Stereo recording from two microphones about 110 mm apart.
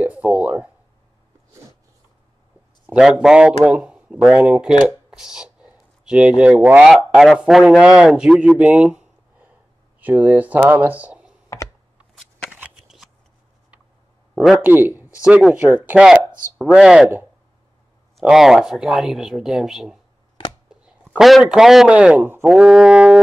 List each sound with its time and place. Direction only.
0.0 s a sound: 15° right (ahead or behind)
2.9 s speech: 5° right (ahead or behind)
11.4 s computer keyboard: 30° left (ahead or behind)
12.4 s shuffling cards: 10° right (ahead or behind)
14.3 s a sound: centre (ahead or behind)
14.6 s speech: 20° right (ahead or behind)
18.2 s a man's voice: 5° right (ahead or behind)